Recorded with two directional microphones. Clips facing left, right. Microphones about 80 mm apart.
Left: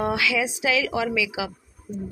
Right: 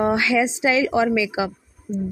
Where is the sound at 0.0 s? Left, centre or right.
Right.